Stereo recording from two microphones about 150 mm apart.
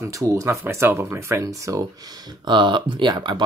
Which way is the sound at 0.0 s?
20° right (ahead or behind).